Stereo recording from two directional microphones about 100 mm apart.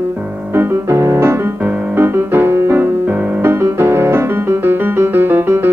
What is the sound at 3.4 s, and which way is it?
Music, 25° right (ahead or behind).